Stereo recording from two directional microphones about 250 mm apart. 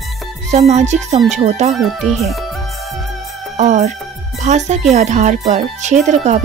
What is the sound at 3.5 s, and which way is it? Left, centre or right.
Music, right.